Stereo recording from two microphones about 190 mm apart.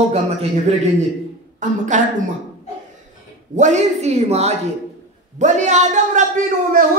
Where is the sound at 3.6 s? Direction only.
40° right (ahead or behind).